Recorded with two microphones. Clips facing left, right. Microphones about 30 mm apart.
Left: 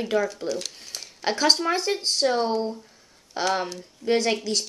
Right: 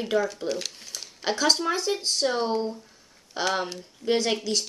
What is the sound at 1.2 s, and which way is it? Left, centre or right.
Speech, centre.